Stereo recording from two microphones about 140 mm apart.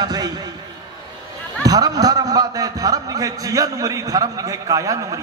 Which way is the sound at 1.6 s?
25° right (ahead or behind).